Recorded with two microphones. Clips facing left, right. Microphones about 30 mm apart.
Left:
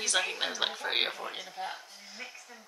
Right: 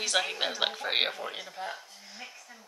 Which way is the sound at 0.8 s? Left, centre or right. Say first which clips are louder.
Right 2 dB; centre.